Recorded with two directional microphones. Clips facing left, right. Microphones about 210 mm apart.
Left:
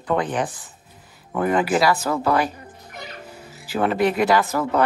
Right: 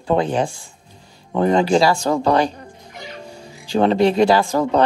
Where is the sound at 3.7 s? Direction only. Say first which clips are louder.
Right 5 dB; 25° right (ahead or behind).